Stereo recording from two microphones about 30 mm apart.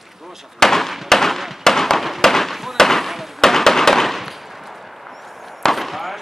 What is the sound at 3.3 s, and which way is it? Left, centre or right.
Fireworks, centre.